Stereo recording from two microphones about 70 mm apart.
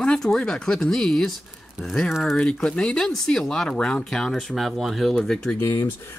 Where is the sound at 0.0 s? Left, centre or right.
Centre.